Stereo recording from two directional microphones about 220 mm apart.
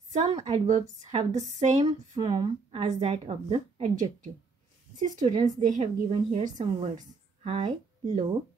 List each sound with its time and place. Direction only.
0.1 s a woman's voice: 30° right (ahead or behind)